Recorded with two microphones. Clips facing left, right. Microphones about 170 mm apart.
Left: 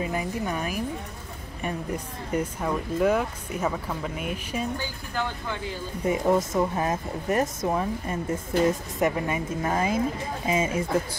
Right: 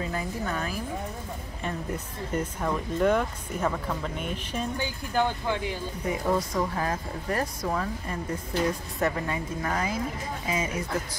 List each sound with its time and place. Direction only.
0.0 s speech: 15° left (ahead or behind)
2.3 s speech: 5° left (ahead or behind)
6.0 s speech: 25° left (ahead or behind)